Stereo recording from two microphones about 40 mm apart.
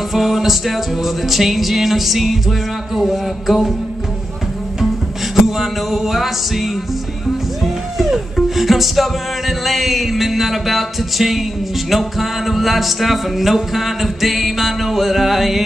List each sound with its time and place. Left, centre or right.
0.1 s music: centre
5.3 s music: centre